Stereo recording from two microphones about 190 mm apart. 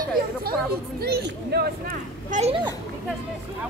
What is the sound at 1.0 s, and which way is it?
Speech, 55° right (ahead or behind).